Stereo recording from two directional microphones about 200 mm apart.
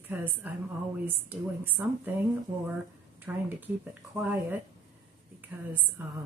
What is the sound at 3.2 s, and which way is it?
A woman's voice, 10° right (ahead or behind).